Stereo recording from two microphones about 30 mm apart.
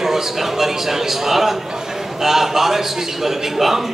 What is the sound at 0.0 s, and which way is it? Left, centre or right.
A man's voice, centre.